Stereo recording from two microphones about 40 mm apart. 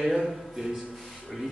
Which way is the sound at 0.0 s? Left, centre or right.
Centre.